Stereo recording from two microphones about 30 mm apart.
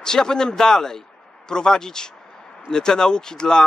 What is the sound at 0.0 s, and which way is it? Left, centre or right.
Speech, left.